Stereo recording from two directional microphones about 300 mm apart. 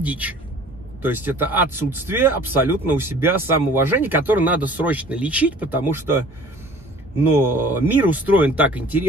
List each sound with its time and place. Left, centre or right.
0.0 s speech: centre
7.5 s speech: centre